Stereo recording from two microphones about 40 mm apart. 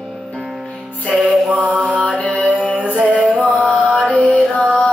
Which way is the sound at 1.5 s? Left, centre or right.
Right.